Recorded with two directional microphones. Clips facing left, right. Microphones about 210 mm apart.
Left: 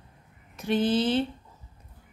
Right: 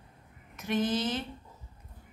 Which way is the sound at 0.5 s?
30° left (ahead or behind).